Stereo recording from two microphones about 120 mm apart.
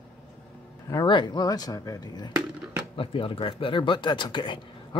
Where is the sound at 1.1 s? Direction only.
40° left (ahead or behind).